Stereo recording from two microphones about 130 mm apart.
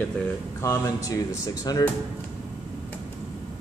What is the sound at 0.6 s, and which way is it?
Speech, 25° left (ahead or behind).